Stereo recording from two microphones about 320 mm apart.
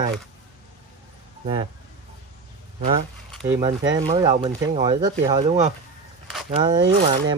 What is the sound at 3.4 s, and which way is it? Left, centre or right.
Speech, centre.